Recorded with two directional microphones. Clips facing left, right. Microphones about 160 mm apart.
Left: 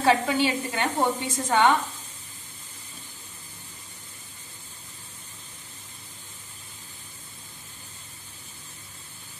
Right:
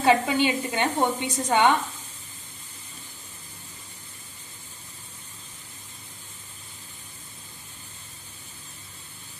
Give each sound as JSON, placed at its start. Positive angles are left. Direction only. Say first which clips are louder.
{"t": 0.0, "sound": "a woman's voice", "louder": "right 1 dB", "side_deg": -20}